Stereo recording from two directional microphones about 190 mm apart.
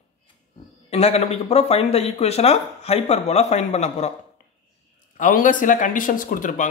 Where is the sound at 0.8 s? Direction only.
35° left (ahead or behind).